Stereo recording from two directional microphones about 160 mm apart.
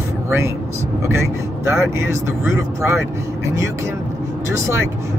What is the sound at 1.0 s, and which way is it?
Speech, 15° right (ahead or behind).